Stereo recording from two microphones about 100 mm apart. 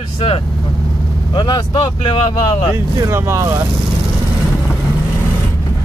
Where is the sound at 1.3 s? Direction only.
50° left (ahead or behind).